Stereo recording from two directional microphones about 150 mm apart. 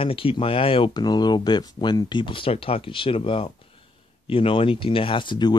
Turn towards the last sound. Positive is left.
turn(degrees=30)  # may be behind; listen again after turning